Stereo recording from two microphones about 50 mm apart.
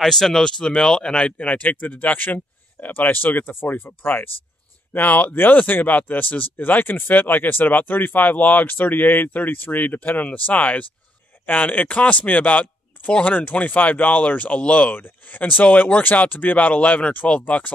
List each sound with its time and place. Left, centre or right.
0.0 s speech: centre; by 17.7 s left